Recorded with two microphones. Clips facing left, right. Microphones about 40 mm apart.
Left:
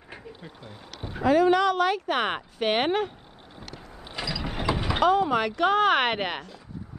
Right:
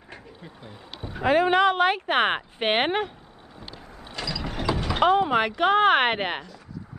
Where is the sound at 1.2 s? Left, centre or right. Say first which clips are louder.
Right 1 dB; right.